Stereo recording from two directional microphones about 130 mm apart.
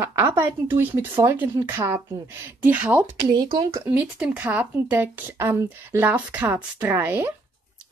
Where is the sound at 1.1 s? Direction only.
30° right (ahead or behind).